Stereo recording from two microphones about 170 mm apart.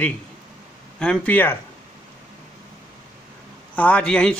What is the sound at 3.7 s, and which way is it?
Speech, 10° left (ahead or behind).